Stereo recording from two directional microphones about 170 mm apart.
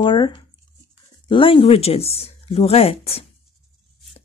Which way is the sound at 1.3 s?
30° left (ahead or behind).